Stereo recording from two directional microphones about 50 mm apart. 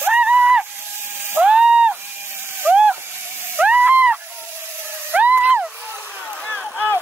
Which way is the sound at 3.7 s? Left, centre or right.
Right.